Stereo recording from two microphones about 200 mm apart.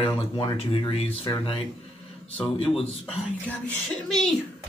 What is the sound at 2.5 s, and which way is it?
Speech, 30° left (ahead or behind).